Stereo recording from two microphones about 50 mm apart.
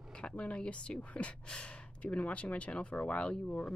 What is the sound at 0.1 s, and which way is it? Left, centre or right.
Speech, centre.